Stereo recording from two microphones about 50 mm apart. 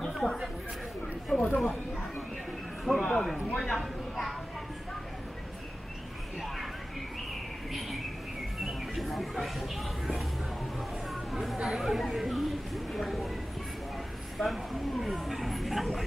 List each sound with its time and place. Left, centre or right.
0.0 s chatter: centre
1.3 s a sound: left
3.0 s speech: centre
3.5 s a sound: centre
8.6 s mouse: centre
11.5 s speech: centre
14.4 s speech: centre